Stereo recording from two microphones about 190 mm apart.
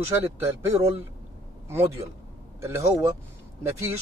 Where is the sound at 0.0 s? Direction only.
15° right (ahead or behind).